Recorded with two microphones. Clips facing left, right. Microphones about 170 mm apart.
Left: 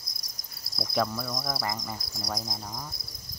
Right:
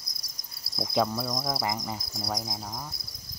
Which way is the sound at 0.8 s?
15° right (ahead or behind).